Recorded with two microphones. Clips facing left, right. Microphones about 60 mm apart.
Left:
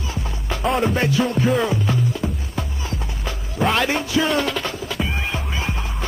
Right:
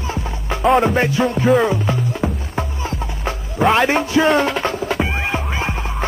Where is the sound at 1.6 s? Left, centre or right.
Right.